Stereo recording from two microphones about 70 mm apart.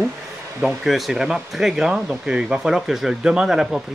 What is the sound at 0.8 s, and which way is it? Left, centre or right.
Speech, centre.